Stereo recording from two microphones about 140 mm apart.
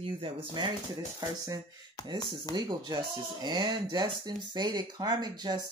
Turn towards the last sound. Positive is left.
turn(degrees=-30)  # may be behind; listen again after turning